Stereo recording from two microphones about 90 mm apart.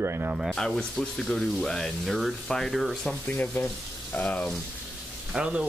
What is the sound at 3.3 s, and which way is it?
Speech, 20° left (ahead or behind).